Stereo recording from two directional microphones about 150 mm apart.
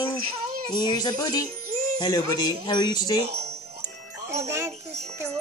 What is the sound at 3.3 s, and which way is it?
Music, 45° right (ahead or behind).